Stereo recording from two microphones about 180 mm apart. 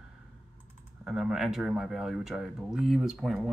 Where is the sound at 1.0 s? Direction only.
5° right (ahead or behind).